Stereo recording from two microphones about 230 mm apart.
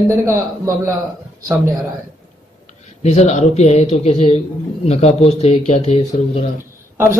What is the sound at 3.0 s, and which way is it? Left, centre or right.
A man's voice, left.